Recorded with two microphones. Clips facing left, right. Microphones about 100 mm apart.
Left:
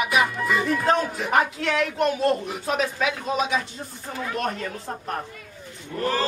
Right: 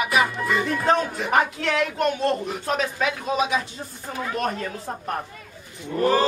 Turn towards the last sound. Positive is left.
turn(degrees=-15)  # may be behind; listen again after turning